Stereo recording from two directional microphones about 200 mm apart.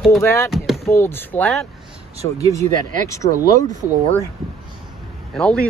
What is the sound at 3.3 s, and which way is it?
Speech, 40° right (ahead or behind).